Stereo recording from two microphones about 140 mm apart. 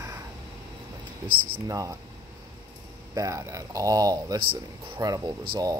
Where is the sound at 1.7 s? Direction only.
25° right (ahead or behind).